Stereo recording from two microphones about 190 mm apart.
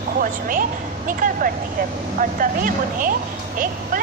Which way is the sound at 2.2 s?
45° right (ahead or behind).